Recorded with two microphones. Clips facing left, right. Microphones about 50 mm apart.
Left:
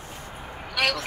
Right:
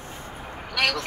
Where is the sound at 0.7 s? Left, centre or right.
Centre.